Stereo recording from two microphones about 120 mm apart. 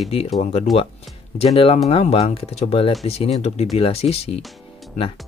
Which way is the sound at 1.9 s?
55° left (ahead or behind).